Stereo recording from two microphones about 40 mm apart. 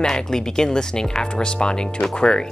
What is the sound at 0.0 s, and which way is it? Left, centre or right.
Speech, centre.